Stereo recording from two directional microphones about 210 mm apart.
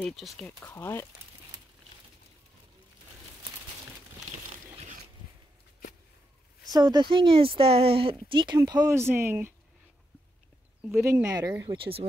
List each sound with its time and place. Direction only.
0.0 s speech: centre (ahead or behind)
6.7 s a woman's voice: 20° right (ahead or behind)
11.0 s speech: 15° right (ahead or behind)